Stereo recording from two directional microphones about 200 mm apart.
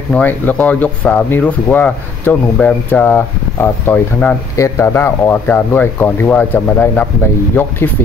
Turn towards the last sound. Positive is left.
turn(degrees=10)  # may be behind; listen again after turning